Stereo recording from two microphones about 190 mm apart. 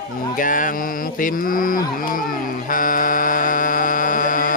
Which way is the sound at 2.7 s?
45° left (ahead or behind).